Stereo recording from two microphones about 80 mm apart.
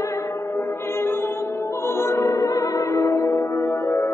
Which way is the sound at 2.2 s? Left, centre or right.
Left.